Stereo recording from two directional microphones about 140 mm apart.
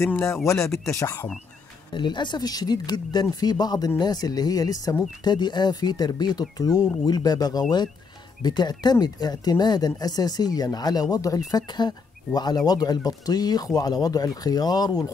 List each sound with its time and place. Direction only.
0.0 s speech: 20° left (ahead or behind)
2.0 s speech: 35° left (ahead or behind)